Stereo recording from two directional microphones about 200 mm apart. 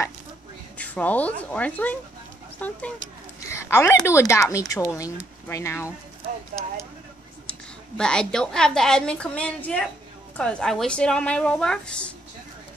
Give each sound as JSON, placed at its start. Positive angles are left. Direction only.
{"t": 0.7, "sound": "speech", "side_deg": 5}
{"t": 8.0, "sound": "a woman's voice", "side_deg": 5}